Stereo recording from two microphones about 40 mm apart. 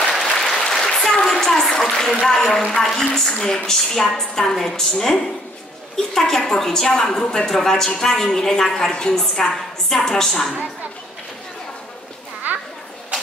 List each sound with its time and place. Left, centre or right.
0.1 s applause: centre
2.2 s a woman's voice: centre
12.5 s children playing: right